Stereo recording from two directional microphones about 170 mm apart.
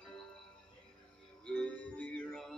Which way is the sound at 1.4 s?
5° left (ahead or behind).